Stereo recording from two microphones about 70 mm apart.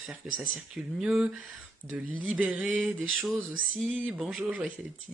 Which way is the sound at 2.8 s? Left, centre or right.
Centre.